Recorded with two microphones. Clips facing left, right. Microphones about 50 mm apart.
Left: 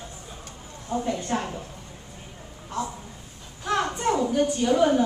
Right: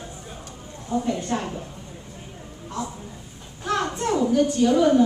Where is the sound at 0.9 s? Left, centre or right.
Left.